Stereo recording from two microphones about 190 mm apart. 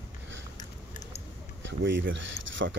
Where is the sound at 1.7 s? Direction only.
70° right (ahead or behind).